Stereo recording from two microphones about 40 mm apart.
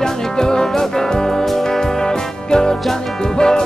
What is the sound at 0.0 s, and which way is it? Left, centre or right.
Music, centre.